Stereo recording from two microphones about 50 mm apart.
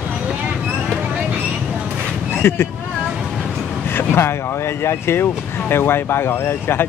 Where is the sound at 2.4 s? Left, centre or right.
Left.